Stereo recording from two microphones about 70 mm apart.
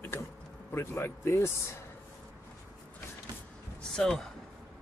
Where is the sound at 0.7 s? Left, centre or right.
Left.